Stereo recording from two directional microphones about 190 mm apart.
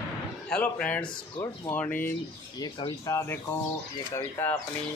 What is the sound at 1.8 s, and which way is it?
Speech, 10° left (ahead or behind).